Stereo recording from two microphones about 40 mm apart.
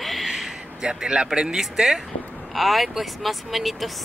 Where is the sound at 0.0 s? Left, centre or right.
Centre.